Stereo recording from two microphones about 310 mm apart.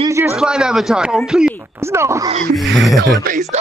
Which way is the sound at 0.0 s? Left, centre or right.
Centre.